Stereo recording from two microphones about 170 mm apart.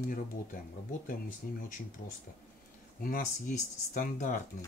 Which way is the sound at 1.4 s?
55° left (ahead or behind).